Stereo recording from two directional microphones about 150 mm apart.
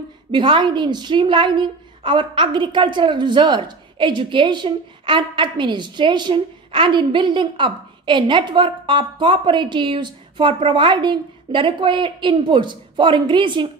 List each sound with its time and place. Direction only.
0.3 s a woman's voice: 30° right (ahead or behind)